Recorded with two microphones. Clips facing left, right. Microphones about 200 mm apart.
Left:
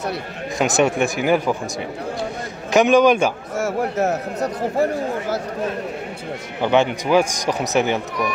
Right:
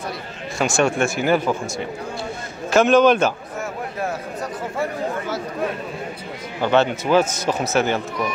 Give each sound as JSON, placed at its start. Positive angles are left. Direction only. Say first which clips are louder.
{"t": 0.6, "sound": "a man's voice", "louder": "left 1 dB", "side_deg": 20}
{"t": 2.7, "sound": "a man's voice", "louder": "even", "side_deg": 15}
{"t": 3.5, "sound": "a sound", "louder": "left 7 dB", "side_deg": 90}
{"t": 6.6, "sound": "a man's voice", "louder": "even", "side_deg": 15}